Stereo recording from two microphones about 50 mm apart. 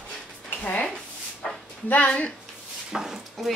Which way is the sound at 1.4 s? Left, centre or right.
Centre.